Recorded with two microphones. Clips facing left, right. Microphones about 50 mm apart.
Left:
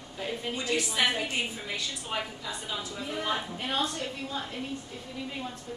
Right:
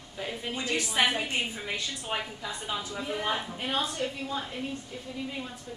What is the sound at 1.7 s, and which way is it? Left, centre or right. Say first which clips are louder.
A woman's voice: right 1 dB; right.